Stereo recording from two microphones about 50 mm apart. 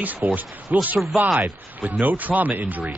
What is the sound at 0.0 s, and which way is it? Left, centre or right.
Speech, right.